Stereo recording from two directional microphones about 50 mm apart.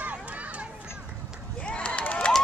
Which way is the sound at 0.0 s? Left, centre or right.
Right.